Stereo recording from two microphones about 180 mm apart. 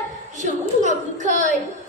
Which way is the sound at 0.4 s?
40° right (ahead or behind).